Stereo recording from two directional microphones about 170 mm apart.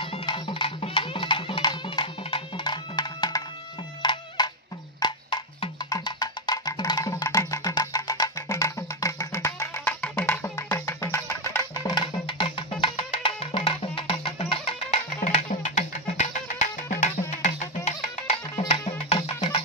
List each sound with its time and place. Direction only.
0.0 s music: 30° left (ahead or behind)
15.1 s music: 45° left (ahead or behind)